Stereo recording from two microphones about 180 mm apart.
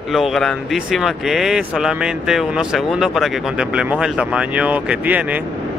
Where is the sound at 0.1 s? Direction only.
Centre (ahead or behind).